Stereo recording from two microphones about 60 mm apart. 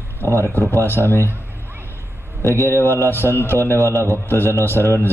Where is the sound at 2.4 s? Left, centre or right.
Left.